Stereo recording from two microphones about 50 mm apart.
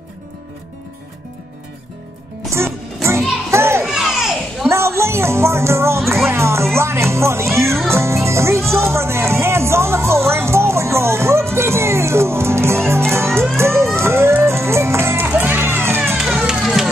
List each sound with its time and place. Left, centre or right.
2.5 s music: right
3.5 s children playing: right
3.8 s children playing: centre
4.6 s music: right
13.6 s vehicle: right
14.4 s music: right
15.2 s music: right